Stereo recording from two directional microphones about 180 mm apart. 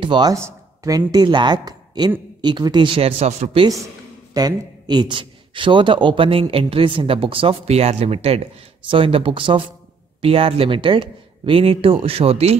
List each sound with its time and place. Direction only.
0.0 s a man's voice: 25° right (ahead or behind)
4.3 s a man's voice: 20° right (ahead or behind)